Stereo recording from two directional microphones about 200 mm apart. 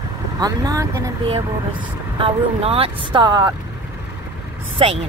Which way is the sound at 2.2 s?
30° right (ahead or behind).